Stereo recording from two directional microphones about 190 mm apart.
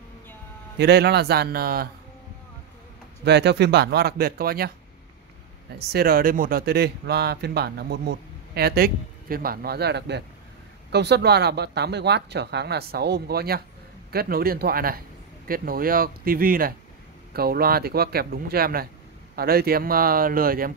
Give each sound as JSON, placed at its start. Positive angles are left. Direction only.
{"t": 0.7, "sound": "speech", "side_deg": -60}
{"t": 3.3, "sound": "speech", "side_deg": -65}
{"t": 5.9, "sound": "speech", "side_deg": -55}